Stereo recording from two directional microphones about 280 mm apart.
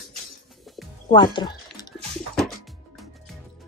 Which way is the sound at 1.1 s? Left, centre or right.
Centre.